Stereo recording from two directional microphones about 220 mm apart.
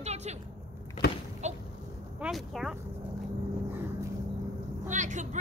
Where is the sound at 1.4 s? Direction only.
30° right (ahead or behind).